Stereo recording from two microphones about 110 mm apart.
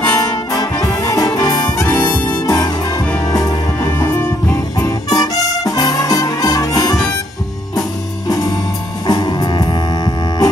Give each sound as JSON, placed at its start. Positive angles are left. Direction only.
{"t": 0.0, "sound": "music", "side_deg": 35}
{"t": 1.9, "sound": "harmonica", "side_deg": 25}
{"t": 3.3, "sound": "music", "side_deg": 35}
{"t": 9.0, "sound": "music", "side_deg": 40}